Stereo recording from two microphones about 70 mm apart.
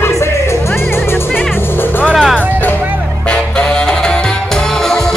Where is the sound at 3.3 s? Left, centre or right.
Centre.